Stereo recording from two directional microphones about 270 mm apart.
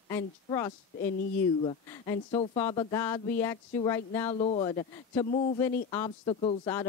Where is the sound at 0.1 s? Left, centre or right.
Centre.